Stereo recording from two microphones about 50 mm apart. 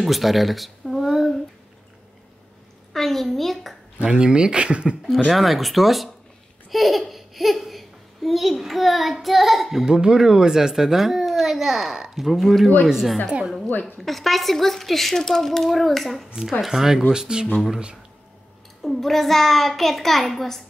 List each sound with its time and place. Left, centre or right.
0.0 s a sound: centre
2.9 s a woman's voice: centre
4.0 s speech: centre
5.3 s a woman's voice: centre
9.8 s a child's voice: centre
18.8 s a woman's voice: centre